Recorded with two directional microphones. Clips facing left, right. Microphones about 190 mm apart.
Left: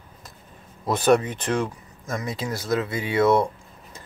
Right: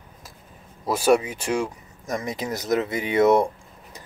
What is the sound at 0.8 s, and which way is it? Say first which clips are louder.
Speech: even; 10° right (ahead or behind).